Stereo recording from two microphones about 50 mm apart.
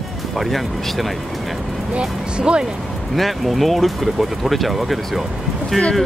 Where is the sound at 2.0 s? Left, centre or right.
Centre.